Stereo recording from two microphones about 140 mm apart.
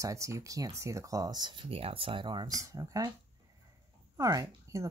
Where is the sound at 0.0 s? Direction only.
20° right (ahead or behind).